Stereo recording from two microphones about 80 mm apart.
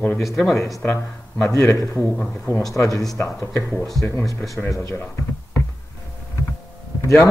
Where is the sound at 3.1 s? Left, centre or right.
Left.